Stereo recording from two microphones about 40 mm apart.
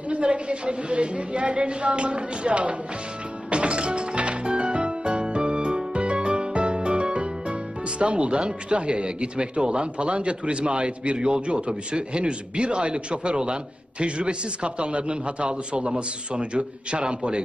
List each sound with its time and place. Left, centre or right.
0.1 s speech: right
3.4 s music: right
8.0 s speech: right